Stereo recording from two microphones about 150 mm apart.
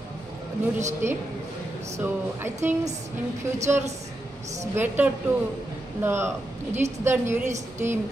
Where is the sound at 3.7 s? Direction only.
15° right (ahead or behind).